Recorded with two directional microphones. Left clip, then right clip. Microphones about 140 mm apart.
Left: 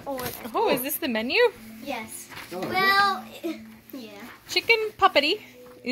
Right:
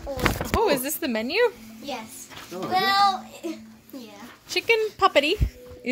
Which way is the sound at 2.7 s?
45° right (ahead or behind).